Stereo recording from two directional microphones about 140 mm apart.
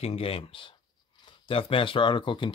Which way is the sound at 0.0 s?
45° left (ahead or behind).